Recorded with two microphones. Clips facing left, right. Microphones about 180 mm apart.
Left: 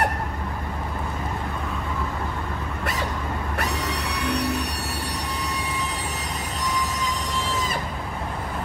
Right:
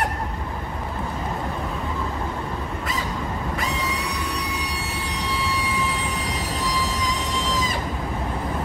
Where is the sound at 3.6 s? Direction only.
70° left (ahead or behind).